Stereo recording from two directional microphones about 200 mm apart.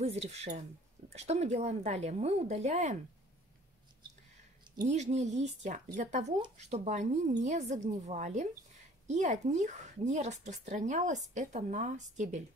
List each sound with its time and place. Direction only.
0.0 s speech: 30° right (ahead or behind)
4.8 s speech: 35° right (ahead or behind)